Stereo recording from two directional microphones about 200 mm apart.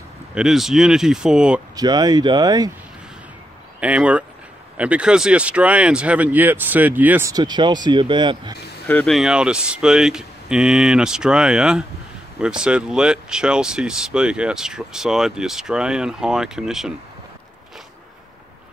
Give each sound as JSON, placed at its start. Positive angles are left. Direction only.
{"t": 0.3, "sound": "speech", "side_deg": -5}
{"t": 1.8, "sound": "speech", "side_deg": -20}
{"t": 3.8, "sound": "speech", "side_deg": -5}
{"t": 8.8, "sound": "speech", "side_deg": 5}